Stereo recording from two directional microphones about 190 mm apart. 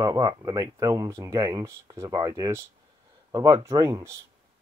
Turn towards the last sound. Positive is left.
turn(degrees=-15)  # may be behind; listen again after turning